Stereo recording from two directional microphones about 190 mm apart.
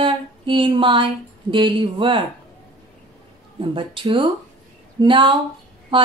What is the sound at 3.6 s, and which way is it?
A woman's voice, 25° right (ahead or behind).